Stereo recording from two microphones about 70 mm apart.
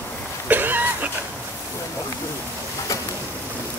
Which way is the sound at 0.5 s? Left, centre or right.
Right.